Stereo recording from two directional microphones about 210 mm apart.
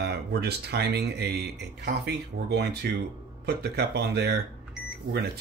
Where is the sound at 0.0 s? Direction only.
50° right (ahead or behind).